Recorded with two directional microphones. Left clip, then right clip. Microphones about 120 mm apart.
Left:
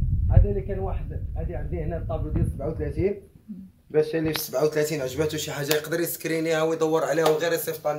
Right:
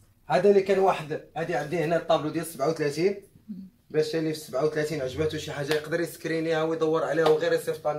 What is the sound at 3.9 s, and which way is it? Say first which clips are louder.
A man's voice: left 3 dB; 40° left (ahead or behind).